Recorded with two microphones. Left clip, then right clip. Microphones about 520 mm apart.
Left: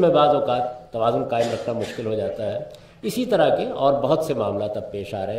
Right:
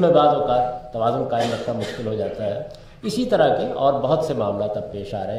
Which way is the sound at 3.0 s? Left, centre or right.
Left.